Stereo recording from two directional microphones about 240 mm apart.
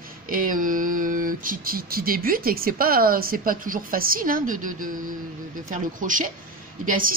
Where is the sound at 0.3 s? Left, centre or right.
Right.